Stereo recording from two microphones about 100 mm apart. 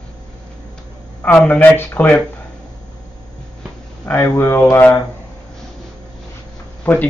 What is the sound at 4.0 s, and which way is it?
Speech, 20° left (ahead or behind).